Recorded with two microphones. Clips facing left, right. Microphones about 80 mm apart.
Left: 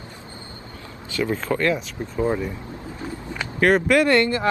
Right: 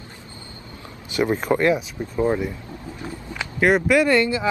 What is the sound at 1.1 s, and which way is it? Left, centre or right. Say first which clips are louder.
Speech: right 3 dB; right.